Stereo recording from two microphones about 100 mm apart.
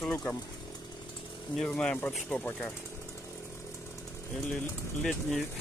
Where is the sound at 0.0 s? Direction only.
5° left (ahead or behind).